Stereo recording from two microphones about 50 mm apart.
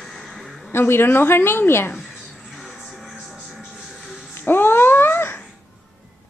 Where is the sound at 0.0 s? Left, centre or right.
Centre.